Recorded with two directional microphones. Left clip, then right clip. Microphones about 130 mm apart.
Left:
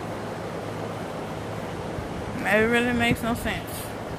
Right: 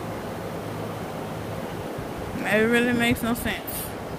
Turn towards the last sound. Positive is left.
turn(degrees=-70)  # may be behind; listen again after turning